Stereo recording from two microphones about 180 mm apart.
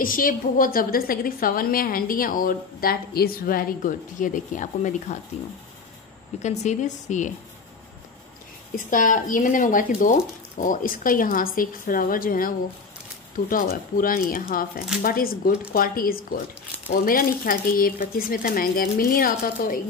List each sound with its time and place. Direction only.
0.0 s a woman's voice: 50° left (ahead or behind)
6.4 s a woman's voice: 40° left (ahead or behind)
8.7 s a woman's voice: 45° left (ahead or behind)